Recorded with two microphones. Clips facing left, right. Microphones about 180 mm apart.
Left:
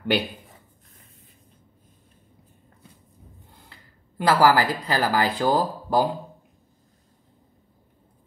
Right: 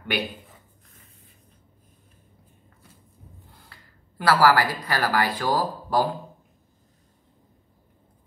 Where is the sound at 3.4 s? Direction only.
20° left (ahead or behind).